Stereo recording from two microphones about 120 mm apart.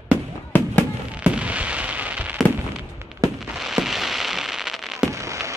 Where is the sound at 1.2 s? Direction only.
10° right (ahead or behind).